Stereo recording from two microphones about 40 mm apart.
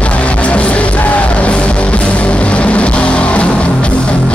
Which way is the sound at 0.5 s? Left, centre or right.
Left.